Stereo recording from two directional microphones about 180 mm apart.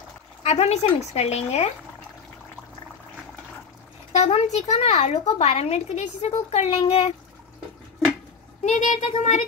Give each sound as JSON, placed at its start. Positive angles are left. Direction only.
{"t": 0.4, "sound": "speech", "side_deg": 35}
{"t": 4.1, "sound": "speech", "side_deg": 35}
{"t": 8.6, "sound": "speech", "side_deg": 40}